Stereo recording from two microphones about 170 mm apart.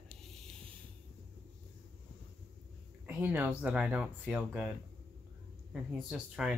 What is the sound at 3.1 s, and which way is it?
Speech, 10° right (ahead or behind).